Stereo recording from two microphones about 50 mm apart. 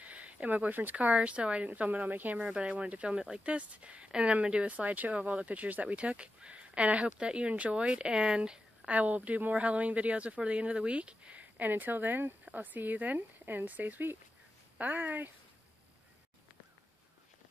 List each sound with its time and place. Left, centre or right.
0.0 s a sound: right
0.7 s speech: right
3.1 s speech: centre
3.4 s speech: right
8.8 s speech: right